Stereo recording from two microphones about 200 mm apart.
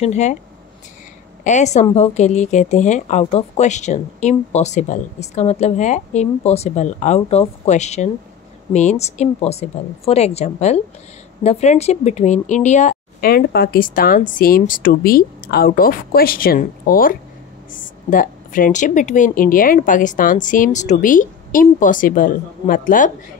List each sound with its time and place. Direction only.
0.0 s speech: 35° left (ahead or behind)
1.4 s speech: 35° left (ahead or behind)